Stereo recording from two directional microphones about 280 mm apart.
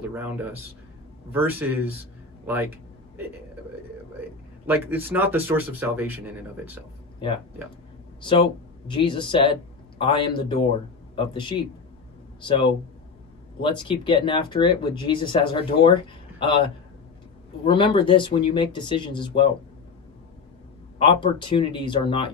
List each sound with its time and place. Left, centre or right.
0.1 s speech: centre
4.6 s speech: centre
8.2 s speech: centre
21.0 s speech: centre